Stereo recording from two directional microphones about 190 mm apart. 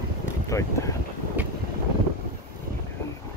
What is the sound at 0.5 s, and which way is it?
Speech, 15° left (ahead or behind).